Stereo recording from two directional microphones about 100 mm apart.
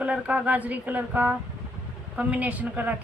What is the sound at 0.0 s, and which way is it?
Speech, 15° right (ahead or behind).